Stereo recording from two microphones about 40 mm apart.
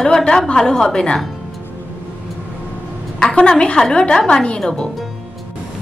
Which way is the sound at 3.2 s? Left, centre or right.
Centre.